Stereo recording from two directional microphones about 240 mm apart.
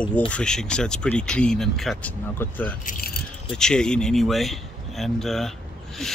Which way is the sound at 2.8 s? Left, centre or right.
Left.